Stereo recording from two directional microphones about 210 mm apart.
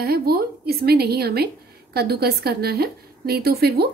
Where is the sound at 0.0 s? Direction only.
45° right (ahead or behind).